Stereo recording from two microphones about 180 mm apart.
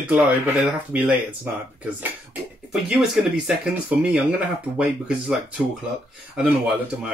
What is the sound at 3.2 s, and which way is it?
Speech, 5° right (ahead or behind).